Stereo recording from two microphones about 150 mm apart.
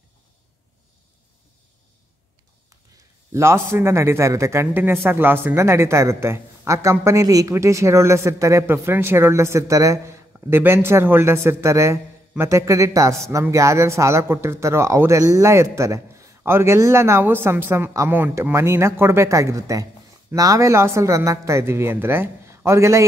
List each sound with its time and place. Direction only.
3.3 s a man's voice: 15° right (ahead or behind)